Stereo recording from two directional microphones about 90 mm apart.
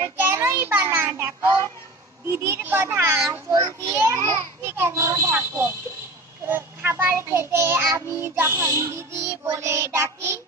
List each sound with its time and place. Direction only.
0.0 s child singing: 25° right (ahead or behind)
2.2 s a child's voice: 30° right (ahead or behind)